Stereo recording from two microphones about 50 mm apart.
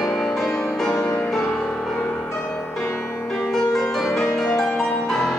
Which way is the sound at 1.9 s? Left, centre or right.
Centre.